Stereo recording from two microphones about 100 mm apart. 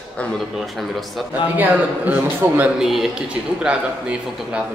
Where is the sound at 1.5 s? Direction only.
15° right (ahead or behind).